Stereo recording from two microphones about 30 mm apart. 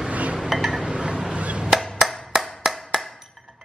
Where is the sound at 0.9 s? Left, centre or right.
Right.